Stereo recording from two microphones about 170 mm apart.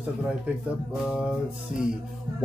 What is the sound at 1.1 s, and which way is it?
Speech, 5° right (ahead or behind).